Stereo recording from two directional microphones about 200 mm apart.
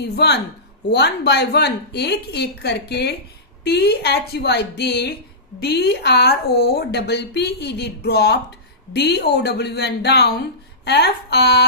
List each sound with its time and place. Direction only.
0.0 s speech: 55° left (ahead or behind)